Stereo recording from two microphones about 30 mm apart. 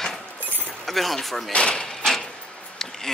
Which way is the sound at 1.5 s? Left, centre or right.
Left.